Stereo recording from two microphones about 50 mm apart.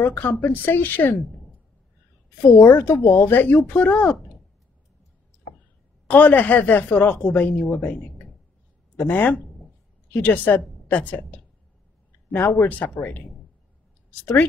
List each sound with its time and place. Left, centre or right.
0.0 s speech: left
6.0 s speech: left
8.9 s a woman's voice: left
12.6 s speech: left